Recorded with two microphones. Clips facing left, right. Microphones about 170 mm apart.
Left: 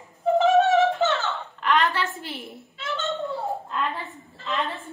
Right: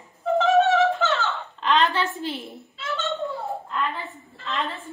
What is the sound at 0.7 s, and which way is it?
Music, 20° left (ahead or behind).